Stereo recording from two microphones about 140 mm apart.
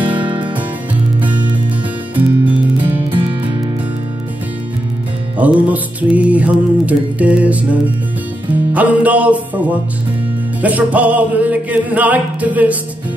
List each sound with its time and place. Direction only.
0.0 s music: 35° right (ahead or behind)
2.1 s music: 10° right (ahead or behind)
5.4 s music: 10° right (ahead or behind)
8.7 s music: 10° right (ahead or behind)